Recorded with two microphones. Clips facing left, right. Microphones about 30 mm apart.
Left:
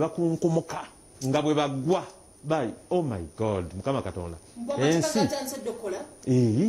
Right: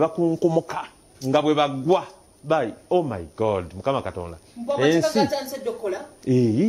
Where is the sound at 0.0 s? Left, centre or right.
Right.